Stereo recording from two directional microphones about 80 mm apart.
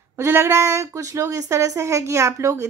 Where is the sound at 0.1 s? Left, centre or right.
Right.